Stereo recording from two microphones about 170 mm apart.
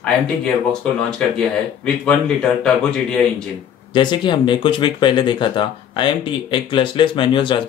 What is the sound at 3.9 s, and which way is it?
Speech, 30° left (ahead or behind).